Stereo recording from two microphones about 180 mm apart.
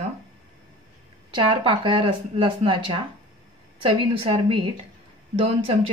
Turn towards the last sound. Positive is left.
turn(degrees=-30)  # may be behind; listen again after turning